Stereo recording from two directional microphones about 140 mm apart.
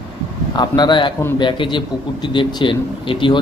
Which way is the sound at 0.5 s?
30° left (ahead or behind).